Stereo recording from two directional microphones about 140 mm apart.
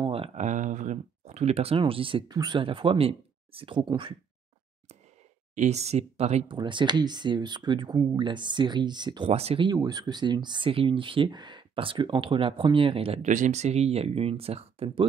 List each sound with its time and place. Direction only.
0.0 s a sound: 40° right (ahead or behind)
0.4 s speech: 65° right (ahead or behind); by 4.1 s 35° right (ahead or behind)
5.5 s speech: 55° right (ahead or behind)
6.4 s speech: 35° right (ahead or behind)
9.3 s speech: 45° right (ahead or behind)
9.7 s speech: 30° right (ahead or behind)
13.2 s speech: 60° right (ahead or behind)